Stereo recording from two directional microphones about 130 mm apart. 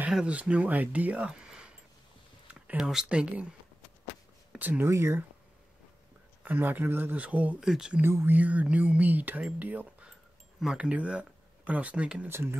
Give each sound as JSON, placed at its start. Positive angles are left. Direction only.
{"t": 0.0, "sound": "speech", "side_deg": -10}
{"t": 6.4, "sound": "speech", "side_deg": -15}
{"t": 8.0, "sound": "speech", "side_deg": -20}